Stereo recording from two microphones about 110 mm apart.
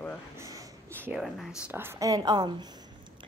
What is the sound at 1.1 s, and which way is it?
Speech, centre (ahead or behind).